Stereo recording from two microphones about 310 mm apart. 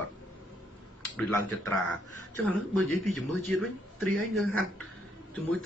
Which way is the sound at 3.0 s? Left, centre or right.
Centre.